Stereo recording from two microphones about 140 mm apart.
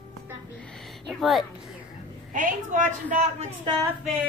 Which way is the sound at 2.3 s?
65° right (ahead or behind).